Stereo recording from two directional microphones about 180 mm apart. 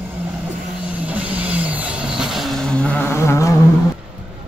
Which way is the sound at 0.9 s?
5° right (ahead or behind).